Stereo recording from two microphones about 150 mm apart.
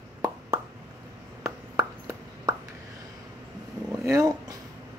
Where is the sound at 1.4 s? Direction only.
20° right (ahead or behind).